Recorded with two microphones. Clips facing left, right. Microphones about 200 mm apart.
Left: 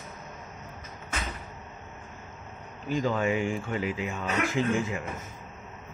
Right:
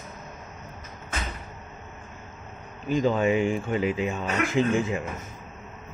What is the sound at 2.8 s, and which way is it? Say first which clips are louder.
Speech: right 4 dB; 20° right (ahead or behind).